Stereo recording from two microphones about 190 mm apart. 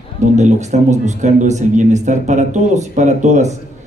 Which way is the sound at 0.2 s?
40° right (ahead or behind).